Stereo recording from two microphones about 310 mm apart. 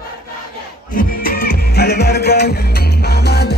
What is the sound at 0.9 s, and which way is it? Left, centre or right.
Music, left.